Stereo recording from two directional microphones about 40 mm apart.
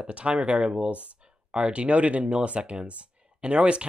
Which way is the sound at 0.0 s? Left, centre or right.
Right.